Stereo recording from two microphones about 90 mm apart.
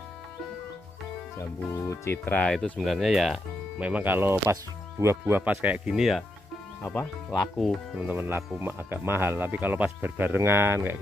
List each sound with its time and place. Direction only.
1.4 s speech: 30° left (ahead or behind); by 2.8 s 15° left (ahead or behind)
2.8 s speech: centre (ahead or behind)
3.8 s speech: 20° right (ahead or behind)
5.2 s speech: 20° right (ahead or behind); by 6.2 s 5° right (ahead or behind)
7.5 s speech: centre (ahead or behind)
8.0 s speech: 20° right (ahead or behind)